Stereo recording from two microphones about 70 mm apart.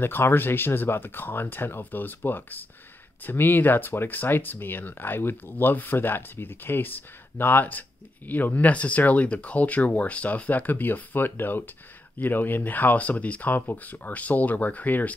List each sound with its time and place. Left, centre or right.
0.0 s speech: left